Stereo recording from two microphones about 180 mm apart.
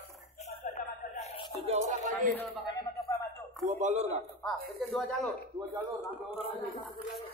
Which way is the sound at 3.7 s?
40° right (ahead or behind).